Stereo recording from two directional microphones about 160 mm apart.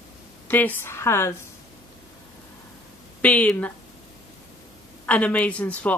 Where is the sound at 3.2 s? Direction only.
10° left (ahead or behind).